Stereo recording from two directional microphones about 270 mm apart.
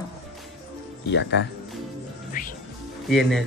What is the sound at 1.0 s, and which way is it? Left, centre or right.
Speech, left.